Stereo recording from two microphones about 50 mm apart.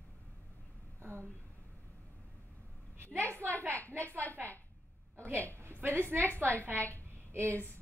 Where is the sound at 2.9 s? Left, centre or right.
Right.